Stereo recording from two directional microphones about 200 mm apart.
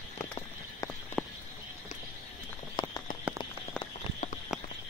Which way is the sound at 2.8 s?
25° left (ahead or behind).